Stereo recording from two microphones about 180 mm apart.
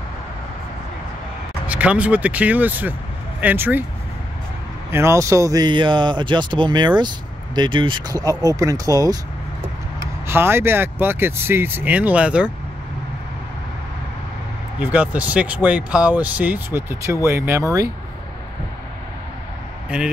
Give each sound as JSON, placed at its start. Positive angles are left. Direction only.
{"t": 1.7, "sound": "speech", "side_deg": -5}
{"t": 4.9, "sound": "speech", "side_deg": -15}
{"t": 10.2, "sound": "speech", "side_deg": -15}
{"t": 14.8, "sound": "speech", "side_deg": -10}